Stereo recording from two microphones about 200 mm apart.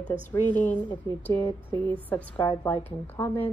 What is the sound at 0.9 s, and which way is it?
Speech, 25° left (ahead or behind).